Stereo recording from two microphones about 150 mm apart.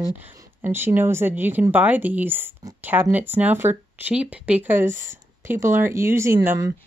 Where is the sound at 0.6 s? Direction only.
15° right (ahead or behind).